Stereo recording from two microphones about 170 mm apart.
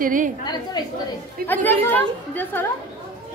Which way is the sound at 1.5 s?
10° left (ahead or behind).